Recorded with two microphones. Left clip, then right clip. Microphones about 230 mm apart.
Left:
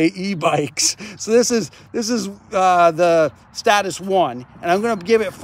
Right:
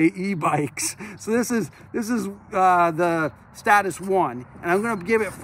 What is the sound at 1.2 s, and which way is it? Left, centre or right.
Speech, centre.